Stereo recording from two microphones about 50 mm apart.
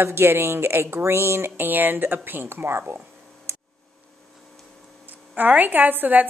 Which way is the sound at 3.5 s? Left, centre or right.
Right.